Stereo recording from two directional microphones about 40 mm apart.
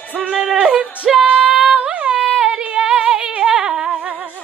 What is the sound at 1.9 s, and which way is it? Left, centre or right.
Female singing, right.